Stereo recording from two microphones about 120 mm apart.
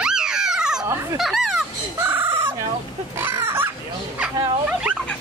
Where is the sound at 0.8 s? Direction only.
25° right (ahead or behind).